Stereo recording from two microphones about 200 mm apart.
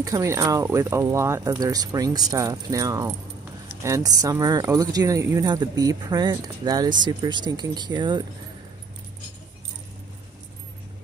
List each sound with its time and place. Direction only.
0.0 s speech: 15° right (ahead or behind)